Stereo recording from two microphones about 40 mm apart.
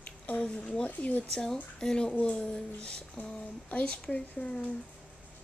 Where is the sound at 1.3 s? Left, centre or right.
Centre.